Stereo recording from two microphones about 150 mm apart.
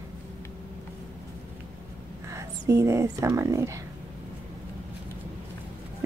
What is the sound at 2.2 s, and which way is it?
Speech, 20° right (ahead or behind).